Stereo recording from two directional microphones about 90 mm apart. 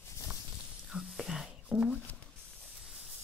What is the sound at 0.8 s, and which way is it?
Whispering, 5° right (ahead or behind).